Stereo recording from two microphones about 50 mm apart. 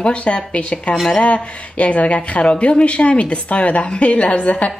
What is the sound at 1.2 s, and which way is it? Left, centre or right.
A woman's voice, left.